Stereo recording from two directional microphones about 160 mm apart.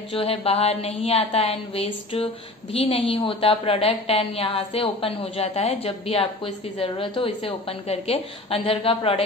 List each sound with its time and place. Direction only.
0.1 s a woman's voice: 35° left (ahead or behind)